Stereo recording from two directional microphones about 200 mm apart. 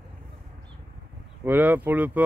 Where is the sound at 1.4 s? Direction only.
10° right (ahead or behind).